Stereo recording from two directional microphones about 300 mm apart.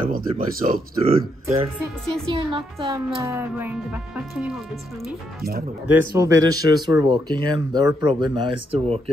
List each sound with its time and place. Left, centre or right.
0.1 s speech: right
1.5 s music: centre
2.3 s speech: centre
5.9 s speech: centre